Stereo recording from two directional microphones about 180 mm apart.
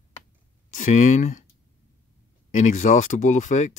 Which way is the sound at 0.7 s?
45° left (ahead or behind).